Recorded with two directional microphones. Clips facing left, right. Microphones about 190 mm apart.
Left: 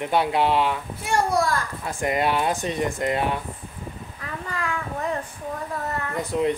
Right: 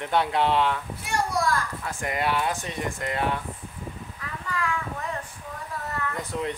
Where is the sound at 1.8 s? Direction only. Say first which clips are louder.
Left 4 dB; 20° left (ahead or behind).